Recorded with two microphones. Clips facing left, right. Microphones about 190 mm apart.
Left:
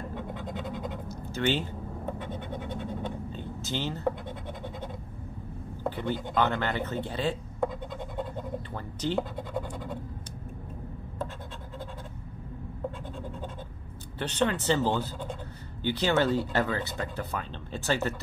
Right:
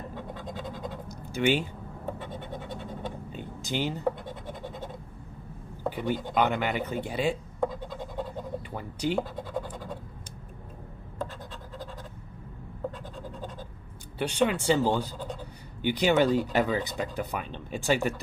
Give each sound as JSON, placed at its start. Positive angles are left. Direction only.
{"t": 0.1, "sound": "scratch", "side_deg": 20}
{"t": 1.0, "sound": "scratch", "side_deg": -10}
{"t": 3.3, "sound": "a sound", "side_deg": -15}
{"t": 5.9, "sound": "speech", "side_deg": -15}
{"t": 8.7, "sound": "speech", "side_deg": -10}
{"t": 14.1, "sound": "speech", "side_deg": -10}